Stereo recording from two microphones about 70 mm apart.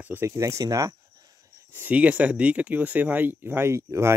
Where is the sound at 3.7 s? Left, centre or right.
Right.